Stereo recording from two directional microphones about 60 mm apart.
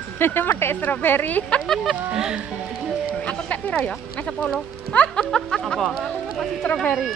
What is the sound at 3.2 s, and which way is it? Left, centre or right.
Speech, left.